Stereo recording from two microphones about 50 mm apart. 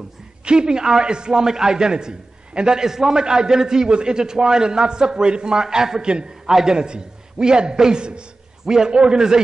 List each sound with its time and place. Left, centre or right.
0.5 s a man's voice: centre